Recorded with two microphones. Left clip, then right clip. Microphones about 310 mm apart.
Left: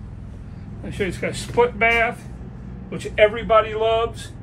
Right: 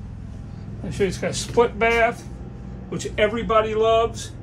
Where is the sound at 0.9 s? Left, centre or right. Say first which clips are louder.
Right 2 dB; centre.